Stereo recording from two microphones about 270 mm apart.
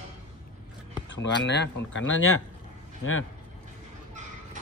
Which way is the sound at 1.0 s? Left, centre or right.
Left.